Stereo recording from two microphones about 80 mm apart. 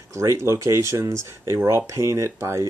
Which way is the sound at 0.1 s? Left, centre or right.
Right.